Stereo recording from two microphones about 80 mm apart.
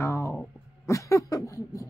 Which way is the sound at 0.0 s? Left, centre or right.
Left.